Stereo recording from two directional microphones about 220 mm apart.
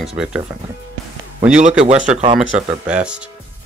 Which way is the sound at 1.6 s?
30° right (ahead or behind).